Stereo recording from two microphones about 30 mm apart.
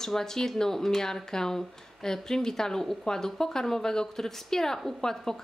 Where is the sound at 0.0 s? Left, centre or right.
Centre.